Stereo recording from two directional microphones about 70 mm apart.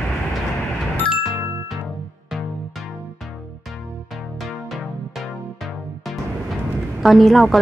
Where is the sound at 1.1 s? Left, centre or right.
Centre.